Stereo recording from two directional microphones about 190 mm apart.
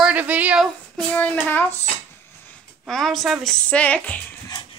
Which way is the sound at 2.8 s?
Centre (ahead or behind).